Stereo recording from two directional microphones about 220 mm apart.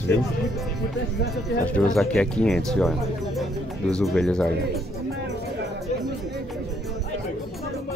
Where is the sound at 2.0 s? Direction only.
5° left (ahead or behind).